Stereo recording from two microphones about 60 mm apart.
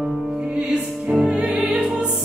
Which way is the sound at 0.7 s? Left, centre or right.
Centre.